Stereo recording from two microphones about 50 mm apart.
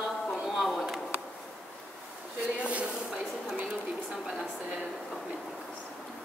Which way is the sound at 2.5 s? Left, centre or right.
Right.